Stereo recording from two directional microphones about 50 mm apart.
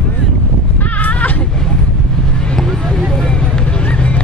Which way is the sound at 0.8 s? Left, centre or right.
Left.